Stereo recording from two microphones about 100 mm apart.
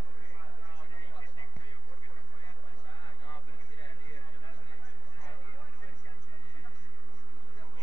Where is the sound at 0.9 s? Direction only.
55° left (ahead or behind).